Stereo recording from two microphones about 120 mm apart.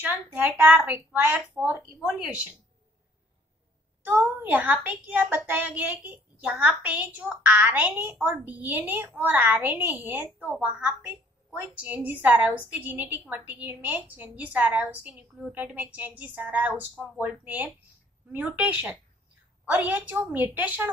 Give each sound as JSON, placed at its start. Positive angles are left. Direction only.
{"t": 0.0, "sound": "a woman's voice", "side_deg": -15}
{"t": 4.0, "sound": "a woman's voice", "side_deg": -15}